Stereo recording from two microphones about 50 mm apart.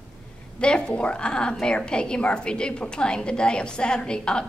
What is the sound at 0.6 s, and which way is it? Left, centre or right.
A woman's voice, centre.